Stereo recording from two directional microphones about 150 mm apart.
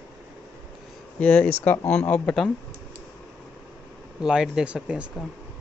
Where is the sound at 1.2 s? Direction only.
10° left (ahead or behind).